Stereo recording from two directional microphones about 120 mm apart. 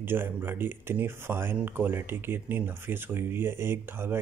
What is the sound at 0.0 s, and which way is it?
Speech, 15° right (ahead or behind).